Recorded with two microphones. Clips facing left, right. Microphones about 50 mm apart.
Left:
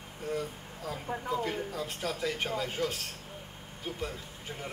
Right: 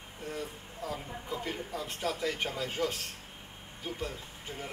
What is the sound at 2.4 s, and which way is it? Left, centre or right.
Speech, centre.